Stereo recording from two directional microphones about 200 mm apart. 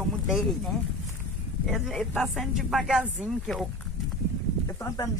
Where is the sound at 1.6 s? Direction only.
Centre (ahead or behind).